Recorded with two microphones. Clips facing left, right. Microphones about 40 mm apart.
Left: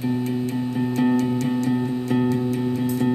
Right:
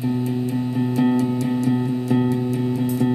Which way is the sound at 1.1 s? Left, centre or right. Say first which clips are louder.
Right 1 dB; left.